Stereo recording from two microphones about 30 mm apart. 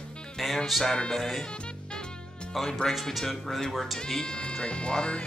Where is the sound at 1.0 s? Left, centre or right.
Centre.